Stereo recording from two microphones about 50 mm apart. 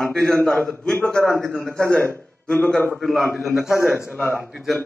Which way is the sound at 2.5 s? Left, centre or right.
Left.